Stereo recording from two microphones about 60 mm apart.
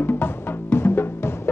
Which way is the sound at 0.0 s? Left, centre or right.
Left.